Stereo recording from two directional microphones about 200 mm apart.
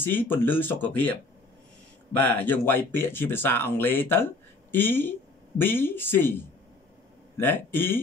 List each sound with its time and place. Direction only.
0.0 s speech: 10° left (ahead or behind)
2.1 s speech: 10° left (ahead or behind)
7.3 s speech: 10° left (ahead or behind)